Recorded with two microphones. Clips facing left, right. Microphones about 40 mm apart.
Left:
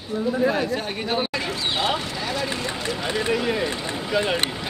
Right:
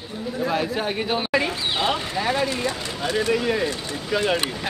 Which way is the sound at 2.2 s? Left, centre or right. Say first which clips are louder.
Right 4 dB; right.